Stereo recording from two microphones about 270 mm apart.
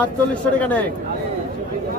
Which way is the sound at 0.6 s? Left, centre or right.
Centre.